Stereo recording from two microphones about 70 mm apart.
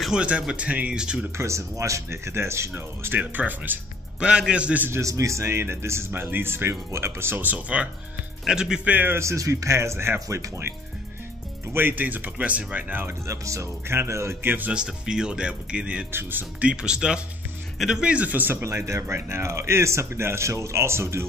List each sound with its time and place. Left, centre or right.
0.2 s speech: centre
1.3 s speech: right
2.7 s speech: right
4.2 s speech: centre
5.0 s speech: right; by 8.8 s centre
8.8 s speech: right
9.2 s a man's voice: right
10.2 s a man's voice: right
11.7 s speech: right
13.3 s a man's voice: right
14.4 s speech: right
14.7 s speech: centre
16.1 s speech: right
18.6 s speech: right